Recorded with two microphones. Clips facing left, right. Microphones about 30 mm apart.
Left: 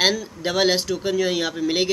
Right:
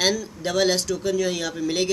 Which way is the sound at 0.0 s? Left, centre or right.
Left.